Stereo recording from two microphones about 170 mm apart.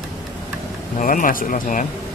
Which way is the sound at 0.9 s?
50° left (ahead or behind).